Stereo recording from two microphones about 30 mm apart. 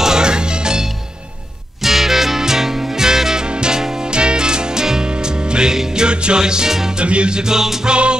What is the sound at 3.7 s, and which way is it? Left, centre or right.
Music, centre.